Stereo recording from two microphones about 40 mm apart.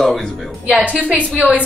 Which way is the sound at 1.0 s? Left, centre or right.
Right.